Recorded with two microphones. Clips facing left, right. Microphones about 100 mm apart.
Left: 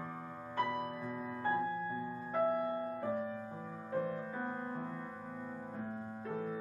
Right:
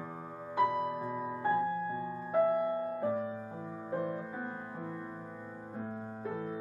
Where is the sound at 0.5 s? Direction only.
15° right (ahead or behind).